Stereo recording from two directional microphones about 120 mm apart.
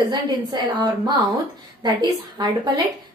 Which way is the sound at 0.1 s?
35° right (ahead or behind).